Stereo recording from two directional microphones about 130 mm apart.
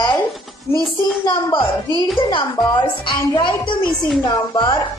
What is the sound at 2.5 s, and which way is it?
A woman's voice, 35° left (ahead or behind).